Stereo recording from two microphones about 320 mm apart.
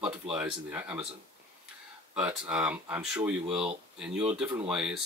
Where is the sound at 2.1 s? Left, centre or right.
Centre.